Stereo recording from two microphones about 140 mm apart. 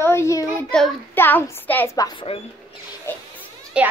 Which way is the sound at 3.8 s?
10° right (ahead or behind).